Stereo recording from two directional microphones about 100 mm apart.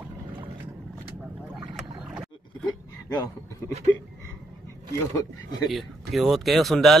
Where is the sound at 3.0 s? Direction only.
40° left (ahead or behind).